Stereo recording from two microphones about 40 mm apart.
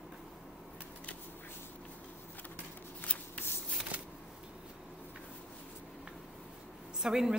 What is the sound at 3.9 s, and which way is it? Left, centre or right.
Shuffling cards, right.